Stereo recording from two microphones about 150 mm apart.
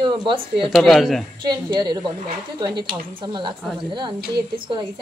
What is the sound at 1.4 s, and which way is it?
A woman's voice, 30° right (ahead or behind).